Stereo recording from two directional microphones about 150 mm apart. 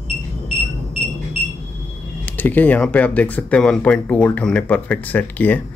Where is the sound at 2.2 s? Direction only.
10° left (ahead or behind).